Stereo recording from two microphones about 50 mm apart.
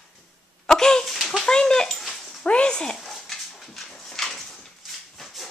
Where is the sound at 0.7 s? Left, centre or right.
Centre.